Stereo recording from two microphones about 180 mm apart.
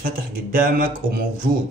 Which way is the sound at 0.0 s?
50° right (ahead or behind).